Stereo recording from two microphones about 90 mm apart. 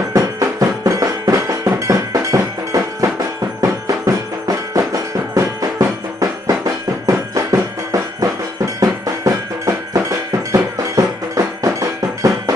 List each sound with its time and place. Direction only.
0.1 s music: 40° right (ahead or behind)